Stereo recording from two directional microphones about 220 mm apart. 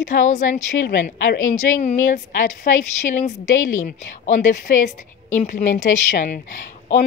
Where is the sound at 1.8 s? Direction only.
30° left (ahead or behind).